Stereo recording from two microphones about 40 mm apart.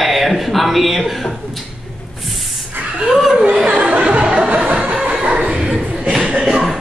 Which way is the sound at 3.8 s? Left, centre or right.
Right.